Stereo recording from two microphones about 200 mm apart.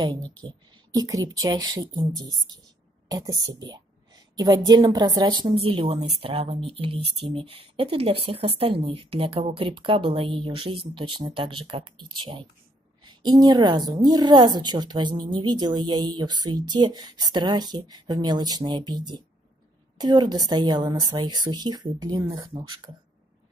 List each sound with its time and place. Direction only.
0.4 s a woman's voice: 20° right (ahead or behind)